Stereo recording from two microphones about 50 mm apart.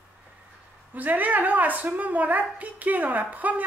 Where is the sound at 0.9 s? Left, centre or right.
Right.